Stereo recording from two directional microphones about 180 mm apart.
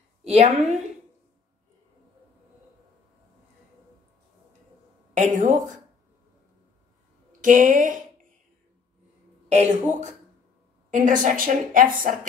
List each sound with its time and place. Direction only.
0.2 s a woman's voice: 35° right (ahead or behind)
5.1 s a woman's voice: 45° right (ahead or behind)
7.4 s a woman's voice: 45° right (ahead or behind)
9.5 s a woman's voice: 40° right (ahead or behind)